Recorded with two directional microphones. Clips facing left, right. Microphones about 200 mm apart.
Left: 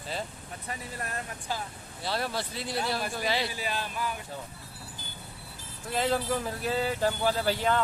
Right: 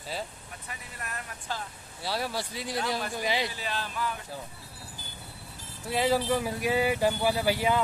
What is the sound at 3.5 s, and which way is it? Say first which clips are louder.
Speech: left 1 dB; 10° left (ahead or behind).